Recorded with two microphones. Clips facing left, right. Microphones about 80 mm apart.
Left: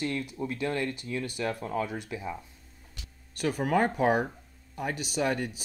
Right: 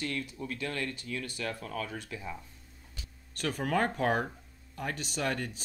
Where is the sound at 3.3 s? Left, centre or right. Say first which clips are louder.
Left 4 dB; centre.